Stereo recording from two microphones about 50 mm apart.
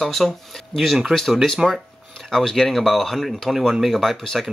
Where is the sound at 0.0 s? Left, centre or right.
Centre.